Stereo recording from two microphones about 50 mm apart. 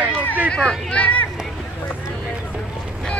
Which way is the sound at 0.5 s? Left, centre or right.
Centre.